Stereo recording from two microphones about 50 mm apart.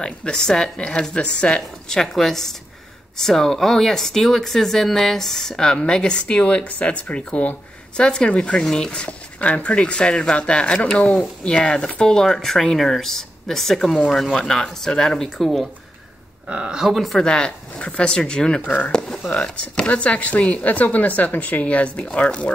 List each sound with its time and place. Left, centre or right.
0.0 s speech: centre
2.0 s speech: centre
9.0 s a woman's voice: left; by 15.6 s centre
16.4 s speech: right
16.8 s speech: centre
17.2 s a woman's voice: centre